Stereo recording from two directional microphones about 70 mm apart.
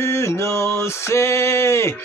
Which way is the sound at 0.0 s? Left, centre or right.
Left.